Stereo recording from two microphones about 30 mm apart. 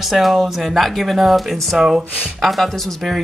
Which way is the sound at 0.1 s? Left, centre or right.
Centre.